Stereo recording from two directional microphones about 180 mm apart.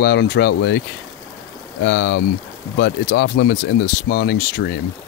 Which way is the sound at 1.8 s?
65° left (ahead or behind).